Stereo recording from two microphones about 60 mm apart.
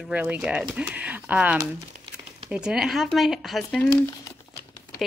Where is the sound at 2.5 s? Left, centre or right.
Centre.